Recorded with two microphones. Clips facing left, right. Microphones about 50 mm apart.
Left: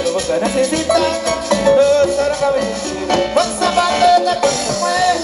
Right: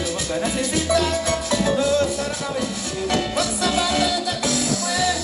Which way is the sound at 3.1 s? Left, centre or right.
Left.